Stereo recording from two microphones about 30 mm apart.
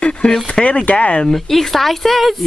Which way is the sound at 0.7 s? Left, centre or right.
Left.